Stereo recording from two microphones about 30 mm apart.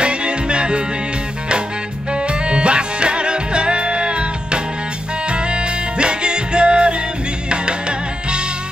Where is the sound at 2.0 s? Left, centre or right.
Right.